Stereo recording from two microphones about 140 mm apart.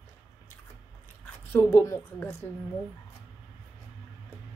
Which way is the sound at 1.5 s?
15° left (ahead or behind).